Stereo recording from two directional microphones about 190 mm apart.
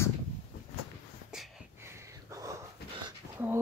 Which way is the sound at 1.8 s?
15° right (ahead or behind).